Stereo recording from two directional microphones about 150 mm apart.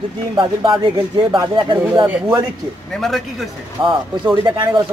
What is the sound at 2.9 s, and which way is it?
Speech, centre (ahead or behind).